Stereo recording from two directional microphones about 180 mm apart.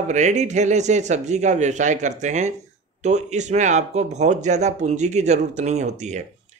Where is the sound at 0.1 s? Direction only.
40° right (ahead or behind).